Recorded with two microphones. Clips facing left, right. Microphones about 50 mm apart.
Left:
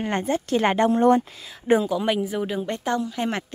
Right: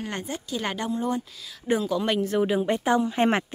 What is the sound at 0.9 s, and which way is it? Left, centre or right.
Speech, left.